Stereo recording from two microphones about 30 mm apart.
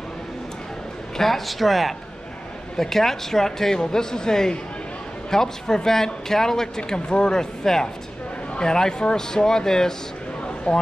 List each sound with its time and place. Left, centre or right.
1.1 s speech: centre
2.8 s speech: centre
10.7 s speech: left